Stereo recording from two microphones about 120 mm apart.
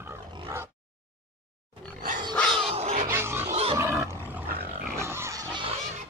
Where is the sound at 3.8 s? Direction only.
25° right (ahead or behind).